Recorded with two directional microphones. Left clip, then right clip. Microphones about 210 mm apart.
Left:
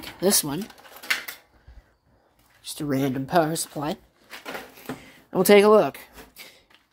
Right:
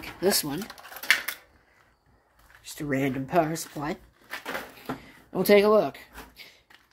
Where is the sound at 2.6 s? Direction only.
30° left (ahead or behind).